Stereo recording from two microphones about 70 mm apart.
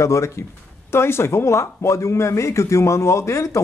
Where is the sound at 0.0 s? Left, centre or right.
Left.